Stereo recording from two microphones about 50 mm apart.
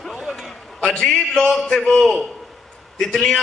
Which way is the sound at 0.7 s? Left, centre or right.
Centre.